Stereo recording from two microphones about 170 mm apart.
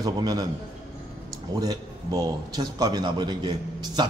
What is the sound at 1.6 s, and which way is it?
A man's voice, 20° right (ahead or behind).